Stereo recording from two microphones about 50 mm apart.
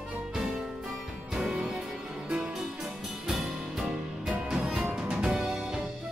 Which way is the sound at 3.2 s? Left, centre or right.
Centre.